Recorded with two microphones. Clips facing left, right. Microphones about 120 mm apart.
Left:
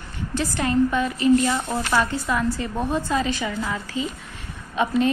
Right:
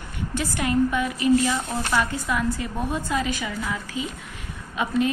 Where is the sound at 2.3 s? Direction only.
10° right (ahead or behind).